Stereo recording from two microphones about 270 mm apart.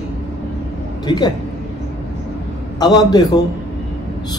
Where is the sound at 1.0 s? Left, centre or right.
Centre.